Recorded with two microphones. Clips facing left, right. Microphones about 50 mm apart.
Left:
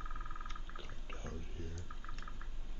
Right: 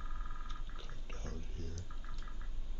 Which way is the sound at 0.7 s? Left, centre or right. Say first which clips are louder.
Left 2 dB; centre.